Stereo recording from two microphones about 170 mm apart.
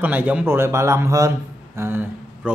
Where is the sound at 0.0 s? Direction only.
10° right (ahead or behind).